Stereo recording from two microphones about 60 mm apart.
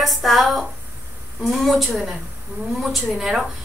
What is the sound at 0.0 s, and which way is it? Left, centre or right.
A woman's voice, centre.